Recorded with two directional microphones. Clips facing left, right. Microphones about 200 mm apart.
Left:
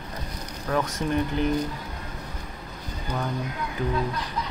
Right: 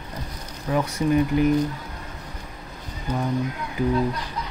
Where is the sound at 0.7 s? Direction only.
10° right (ahead or behind).